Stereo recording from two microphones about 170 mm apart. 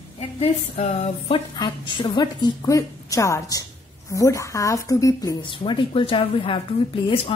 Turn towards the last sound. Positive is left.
turn(degrees=35)  # may be behind; listen again after turning